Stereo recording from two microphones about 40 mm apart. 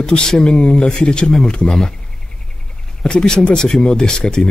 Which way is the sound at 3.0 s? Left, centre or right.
Centre.